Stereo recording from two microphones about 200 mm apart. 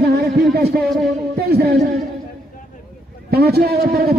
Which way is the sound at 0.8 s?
Centre (ahead or behind).